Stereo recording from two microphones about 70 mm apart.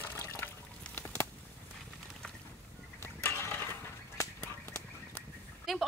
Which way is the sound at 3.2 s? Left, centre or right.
Left.